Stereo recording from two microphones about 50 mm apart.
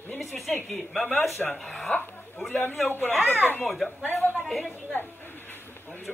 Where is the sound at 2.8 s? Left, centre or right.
Left.